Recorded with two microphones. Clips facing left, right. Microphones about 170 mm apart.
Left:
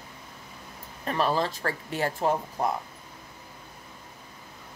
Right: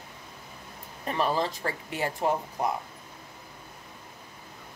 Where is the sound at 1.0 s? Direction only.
15° right (ahead or behind).